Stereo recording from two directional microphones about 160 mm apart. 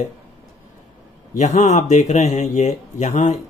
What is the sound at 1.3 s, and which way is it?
Speech, 45° left (ahead or behind).